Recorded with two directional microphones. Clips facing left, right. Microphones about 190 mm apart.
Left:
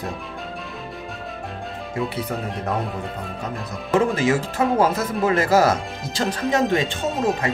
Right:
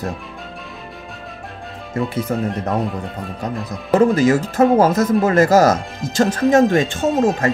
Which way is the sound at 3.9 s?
40° right (ahead or behind).